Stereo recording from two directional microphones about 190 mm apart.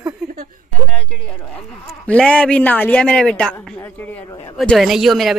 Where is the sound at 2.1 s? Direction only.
5° left (ahead or behind).